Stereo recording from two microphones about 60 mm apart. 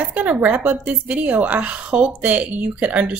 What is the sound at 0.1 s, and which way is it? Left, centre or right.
A woman's voice, right.